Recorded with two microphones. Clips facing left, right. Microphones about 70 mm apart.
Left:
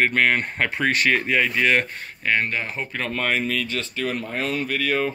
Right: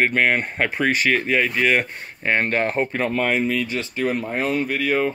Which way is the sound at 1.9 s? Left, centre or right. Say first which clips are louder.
Right 1 dB; right.